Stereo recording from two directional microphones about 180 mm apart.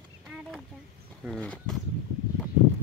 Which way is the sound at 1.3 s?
5° left (ahead or behind).